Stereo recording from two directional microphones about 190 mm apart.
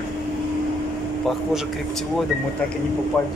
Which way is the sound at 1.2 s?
Centre (ahead or behind).